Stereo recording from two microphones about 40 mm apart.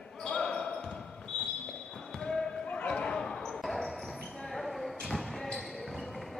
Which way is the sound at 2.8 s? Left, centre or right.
Left.